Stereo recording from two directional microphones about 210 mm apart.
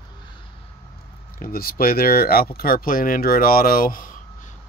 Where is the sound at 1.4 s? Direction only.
45° left (ahead or behind).